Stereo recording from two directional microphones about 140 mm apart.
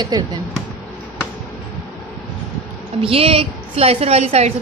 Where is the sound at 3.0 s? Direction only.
40° right (ahead or behind).